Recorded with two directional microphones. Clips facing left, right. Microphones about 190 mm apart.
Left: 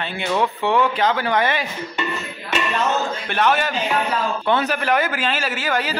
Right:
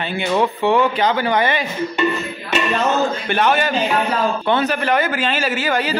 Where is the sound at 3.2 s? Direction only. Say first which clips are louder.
Right 2 dB; centre (ahead or behind).